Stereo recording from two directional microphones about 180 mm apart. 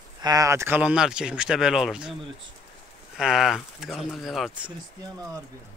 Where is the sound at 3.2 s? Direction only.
Centre (ahead or behind).